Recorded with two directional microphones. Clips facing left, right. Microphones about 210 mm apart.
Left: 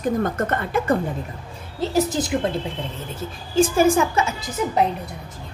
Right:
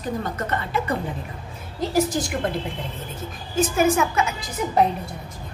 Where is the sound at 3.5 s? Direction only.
30° left (ahead or behind).